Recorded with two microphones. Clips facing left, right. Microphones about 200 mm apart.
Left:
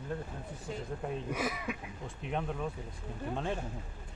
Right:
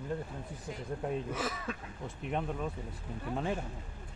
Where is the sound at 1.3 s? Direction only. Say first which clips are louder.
Left 1 dB; 15° left (ahead or behind).